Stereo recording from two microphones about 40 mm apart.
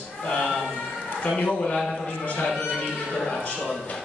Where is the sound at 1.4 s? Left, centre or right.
Left.